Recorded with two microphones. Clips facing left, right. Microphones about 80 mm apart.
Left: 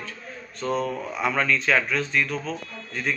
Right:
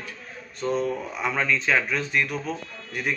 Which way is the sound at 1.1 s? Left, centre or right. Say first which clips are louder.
Left 2 dB; centre.